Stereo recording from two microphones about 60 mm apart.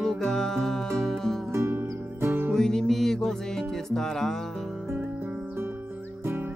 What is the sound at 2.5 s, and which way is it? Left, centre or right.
Music, centre.